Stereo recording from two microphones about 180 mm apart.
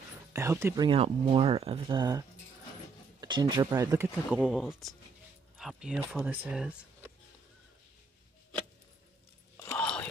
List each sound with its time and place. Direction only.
0.3 s speech: 15° right (ahead or behind)
0.8 s speech: 30° right (ahead or behind); by 7.1 s 5° right (ahead or behind)
9.6 s a sound: 10° left (ahead or behind)